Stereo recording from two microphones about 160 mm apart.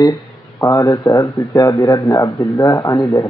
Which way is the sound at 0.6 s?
20° left (ahead or behind).